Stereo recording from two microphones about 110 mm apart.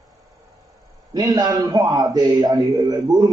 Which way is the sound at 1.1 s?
40° right (ahead or behind).